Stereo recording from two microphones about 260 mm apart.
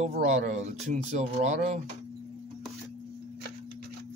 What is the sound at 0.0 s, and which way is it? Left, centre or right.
Speech, right.